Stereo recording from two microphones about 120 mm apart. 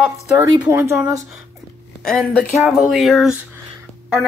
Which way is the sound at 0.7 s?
20° right (ahead or behind).